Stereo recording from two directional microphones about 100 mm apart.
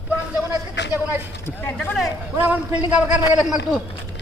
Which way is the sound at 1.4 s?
20° left (ahead or behind).